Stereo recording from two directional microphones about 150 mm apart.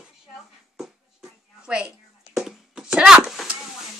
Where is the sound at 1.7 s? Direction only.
5° right (ahead or behind).